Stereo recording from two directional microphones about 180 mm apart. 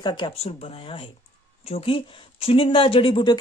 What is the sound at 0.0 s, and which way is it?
A woman's voice, 25° left (ahead or behind).